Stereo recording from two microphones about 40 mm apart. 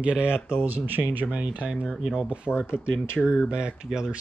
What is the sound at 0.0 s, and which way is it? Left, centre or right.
Speech, right.